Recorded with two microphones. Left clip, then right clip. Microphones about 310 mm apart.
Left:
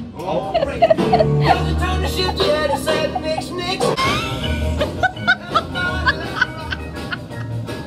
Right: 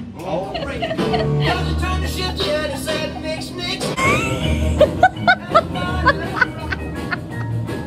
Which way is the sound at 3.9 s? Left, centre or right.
Centre.